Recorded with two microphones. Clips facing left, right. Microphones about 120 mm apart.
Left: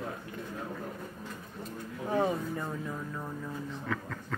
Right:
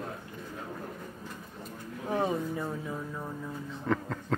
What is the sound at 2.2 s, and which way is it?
Speech, 10° right (ahead or behind).